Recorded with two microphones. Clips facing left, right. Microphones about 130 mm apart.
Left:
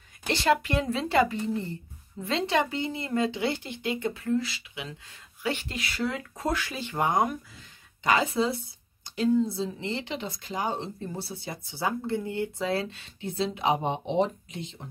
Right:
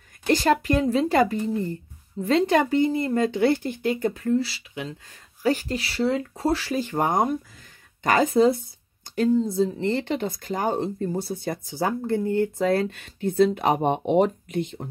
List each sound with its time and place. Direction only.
0.3 s speech: 40° right (ahead or behind)